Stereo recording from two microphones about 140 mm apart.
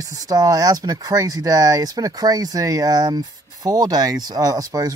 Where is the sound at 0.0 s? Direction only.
25° right (ahead or behind).